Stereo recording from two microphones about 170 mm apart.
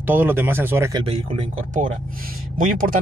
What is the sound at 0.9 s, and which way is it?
Speech, 30° right (ahead or behind).